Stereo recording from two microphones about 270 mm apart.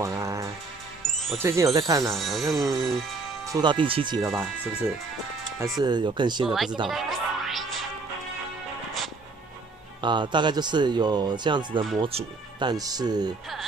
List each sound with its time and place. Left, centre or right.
0.0 s music: centre
1.1 s music: centre
1.7 s speech: centre
2.0 s speech: centre
3.5 s speech: centre
5.6 s speech: centre
6.4 s speech: centre
6.9 s music: centre
10.0 s speech: centre